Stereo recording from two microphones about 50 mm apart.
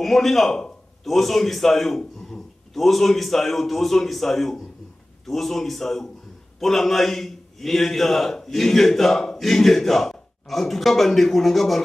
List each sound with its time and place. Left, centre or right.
0.0 s a man's voice: centre